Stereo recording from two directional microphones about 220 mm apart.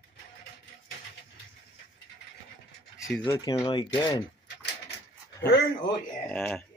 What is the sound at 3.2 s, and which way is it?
Speech, 15° left (ahead or behind).